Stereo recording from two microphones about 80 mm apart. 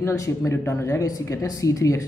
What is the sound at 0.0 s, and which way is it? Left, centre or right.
A woman's voice, left.